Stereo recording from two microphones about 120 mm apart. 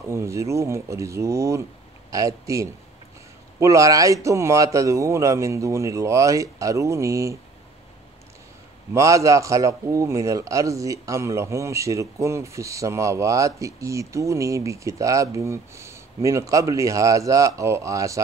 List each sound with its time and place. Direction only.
0.1 s a man's voice: 25° right (ahead or behind)
8.9 s a man's voice: 25° right (ahead or behind)